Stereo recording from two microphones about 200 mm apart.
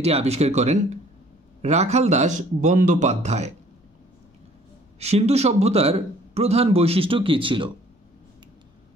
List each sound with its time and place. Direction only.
0.0 s a man's voice: 30° right (ahead or behind)
4.9 s a man's voice: 30° right (ahead or behind)